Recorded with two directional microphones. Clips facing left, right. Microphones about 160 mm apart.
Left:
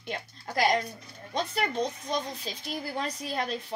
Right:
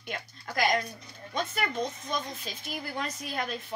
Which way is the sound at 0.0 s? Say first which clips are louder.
Left 2 dB; 30° left (ahead or behind).